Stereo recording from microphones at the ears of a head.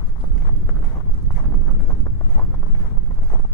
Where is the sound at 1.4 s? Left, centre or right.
Left.